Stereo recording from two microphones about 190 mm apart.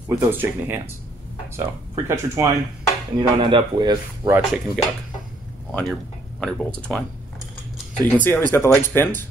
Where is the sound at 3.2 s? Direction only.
25° right (ahead or behind).